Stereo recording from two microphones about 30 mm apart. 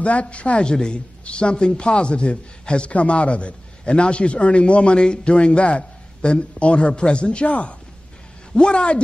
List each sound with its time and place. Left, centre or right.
0.0 s speech: left
0.7 s a woman's voice: left
2.9 s a man's voice: left
8.5 s a man's voice: left